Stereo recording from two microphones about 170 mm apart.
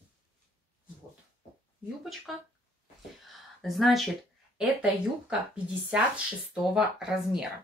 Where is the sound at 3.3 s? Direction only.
Centre (ahead or behind).